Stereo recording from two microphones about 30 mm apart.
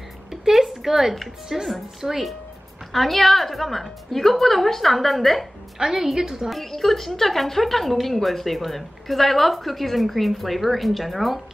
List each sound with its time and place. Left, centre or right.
0.3 s a sound: centre
1.5 s a woman's voice: centre
2.9 s speech: centre
5.8 s a woman's voice: centre
6.5 s speech: centre